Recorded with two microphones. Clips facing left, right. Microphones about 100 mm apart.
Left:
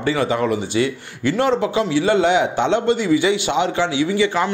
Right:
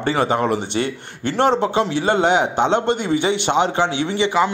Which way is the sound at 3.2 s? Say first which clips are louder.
Even; 30° right (ahead or behind).